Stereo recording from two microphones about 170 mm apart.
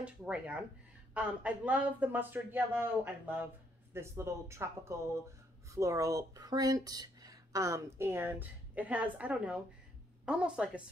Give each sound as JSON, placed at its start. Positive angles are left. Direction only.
{"t": 0.0, "sound": "a woman's voice", "side_deg": -5}